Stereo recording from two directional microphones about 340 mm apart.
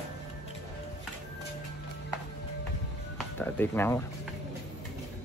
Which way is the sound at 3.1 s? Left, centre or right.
Centre.